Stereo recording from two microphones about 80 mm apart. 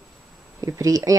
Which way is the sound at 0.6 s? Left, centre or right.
Right.